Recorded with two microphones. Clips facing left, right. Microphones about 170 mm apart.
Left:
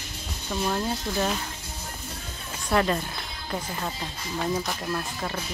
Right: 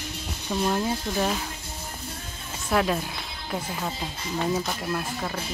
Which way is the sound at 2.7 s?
Centre (ahead or behind).